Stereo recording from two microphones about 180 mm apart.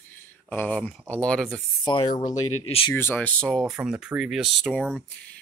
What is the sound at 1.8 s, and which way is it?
Speech, 25° left (ahead or behind).